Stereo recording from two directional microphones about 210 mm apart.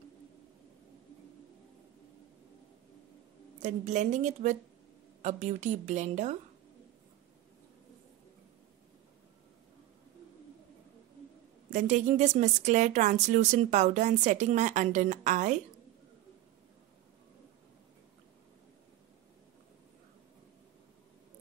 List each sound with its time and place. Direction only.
3.6 s speech: 35° right (ahead or behind)
11.7 s speech: 35° right (ahead or behind)